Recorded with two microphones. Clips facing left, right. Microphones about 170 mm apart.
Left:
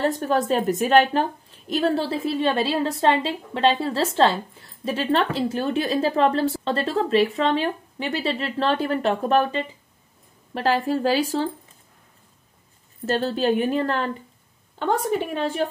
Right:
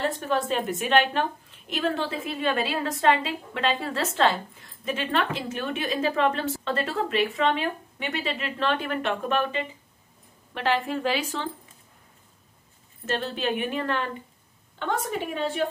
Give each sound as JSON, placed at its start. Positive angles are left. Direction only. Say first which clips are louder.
{"t": 0.2, "sound": "a woman's voice", "louder": "left 5 dB", "side_deg": 40}
{"t": 13.0, "sound": "a woman's voice", "louder": "left 6 dB", "side_deg": 35}